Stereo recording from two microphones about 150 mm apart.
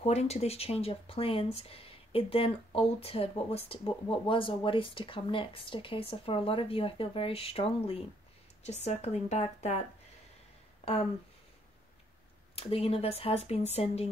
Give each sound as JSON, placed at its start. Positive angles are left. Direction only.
{"t": 0.0, "sound": "speech", "side_deg": 45}
{"t": 12.5, "sound": "speech", "side_deg": 40}